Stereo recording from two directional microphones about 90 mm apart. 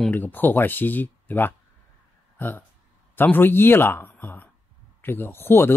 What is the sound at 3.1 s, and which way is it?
Speech, 20° left (ahead or behind).